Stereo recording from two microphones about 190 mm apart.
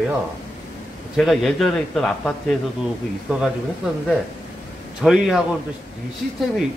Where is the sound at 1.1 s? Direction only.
Centre (ahead or behind).